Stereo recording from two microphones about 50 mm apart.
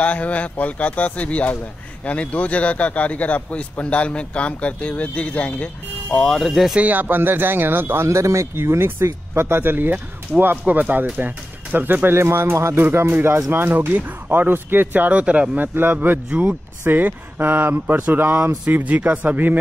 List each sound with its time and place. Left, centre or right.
0.0 s a man's voice: left
6.2 s speech: centre
6.8 s speech: right
8.1 s speech: right
12.2 s speech: right
12.5 s speech: right
12.8 s speech: right
13.5 s speech: right
15.0 s speech: right
15.5 s speech: right
18.7 s speech: right